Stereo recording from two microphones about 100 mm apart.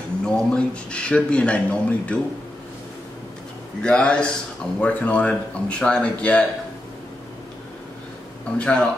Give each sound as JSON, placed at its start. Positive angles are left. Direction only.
{"t": 0.2, "sound": "speech", "side_deg": 10}
{"t": 3.8, "sound": "speech", "side_deg": 10}
{"t": 8.5, "sound": "speech", "side_deg": 10}